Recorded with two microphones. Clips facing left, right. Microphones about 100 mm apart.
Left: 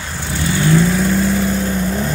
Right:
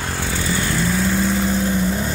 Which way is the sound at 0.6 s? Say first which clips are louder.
Left 8 dB; centre (ahead or behind).